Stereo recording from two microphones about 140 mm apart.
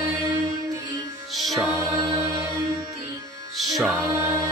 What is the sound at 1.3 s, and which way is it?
Music, centre (ahead or behind).